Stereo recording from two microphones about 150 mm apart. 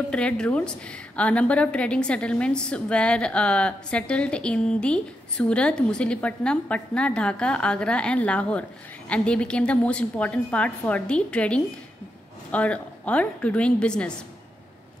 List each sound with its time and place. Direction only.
0.1 s a woman's voice: 5° left (ahead or behind)